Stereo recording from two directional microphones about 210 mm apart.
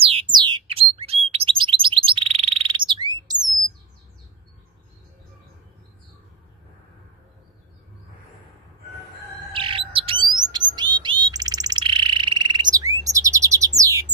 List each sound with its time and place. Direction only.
0.0 s a sound: 25° right (ahead or behind)
0.9 s bird: 30° right (ahead or behind)
9.5 s bird: 25° right (ahead or behind)